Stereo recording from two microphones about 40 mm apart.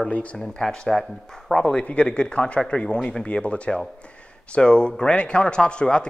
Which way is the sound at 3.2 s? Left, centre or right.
Left.